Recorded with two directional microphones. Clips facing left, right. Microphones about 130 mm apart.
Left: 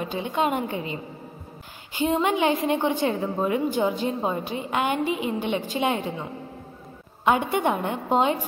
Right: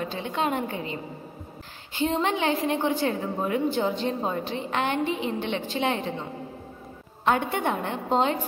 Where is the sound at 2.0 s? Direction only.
15° left (ahead or behind).